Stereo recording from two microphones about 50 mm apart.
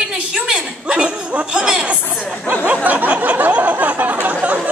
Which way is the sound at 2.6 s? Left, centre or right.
Right.